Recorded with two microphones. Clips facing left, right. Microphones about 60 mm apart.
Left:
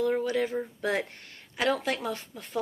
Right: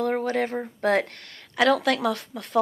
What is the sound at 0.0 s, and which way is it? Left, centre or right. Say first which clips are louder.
Speech: right 2 dB; right.